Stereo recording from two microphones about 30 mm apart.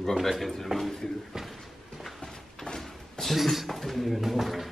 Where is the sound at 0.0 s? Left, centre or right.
Centre.